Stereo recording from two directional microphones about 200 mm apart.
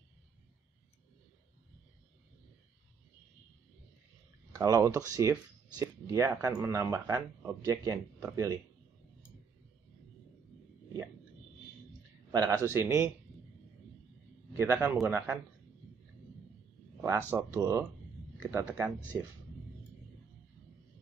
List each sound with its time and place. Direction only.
4.5 s speech: 15° right (ahead or behind)
12.3 s speech: 20° right (ahead or behind)
14.6 s speech: 10° right (ahead or behind)
17.3 s speech: 15° right (ahead or behind)